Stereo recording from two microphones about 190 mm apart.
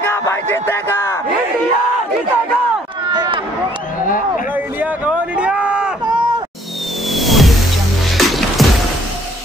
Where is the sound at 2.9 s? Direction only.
25° right (ahead or behind).